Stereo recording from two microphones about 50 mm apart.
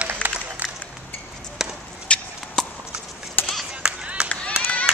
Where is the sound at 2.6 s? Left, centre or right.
Centre.